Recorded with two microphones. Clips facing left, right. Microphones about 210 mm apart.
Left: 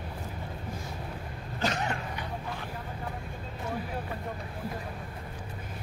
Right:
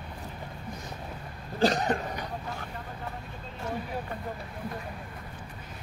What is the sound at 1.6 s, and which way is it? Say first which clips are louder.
Cough: right 6 dB; 35° right (ahead or behind).